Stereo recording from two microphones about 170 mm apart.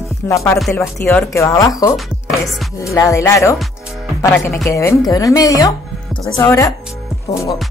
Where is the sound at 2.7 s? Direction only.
20° left (ahead or behind).